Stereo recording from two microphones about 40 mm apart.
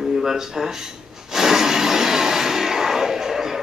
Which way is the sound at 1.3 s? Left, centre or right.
Centre.